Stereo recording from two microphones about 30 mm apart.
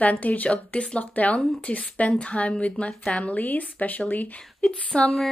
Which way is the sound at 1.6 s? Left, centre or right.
Left.